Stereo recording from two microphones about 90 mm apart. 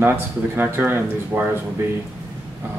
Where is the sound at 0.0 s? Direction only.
25° right (ahead or behind).